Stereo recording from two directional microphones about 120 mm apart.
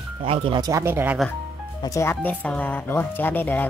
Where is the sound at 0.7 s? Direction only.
20° right (ahead or behind).